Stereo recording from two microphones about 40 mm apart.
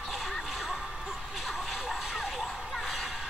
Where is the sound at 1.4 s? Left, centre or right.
Centre.